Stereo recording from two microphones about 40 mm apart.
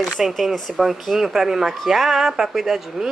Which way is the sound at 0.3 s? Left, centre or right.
Centre.